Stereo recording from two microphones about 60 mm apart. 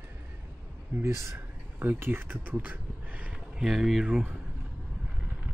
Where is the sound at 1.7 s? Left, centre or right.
Right.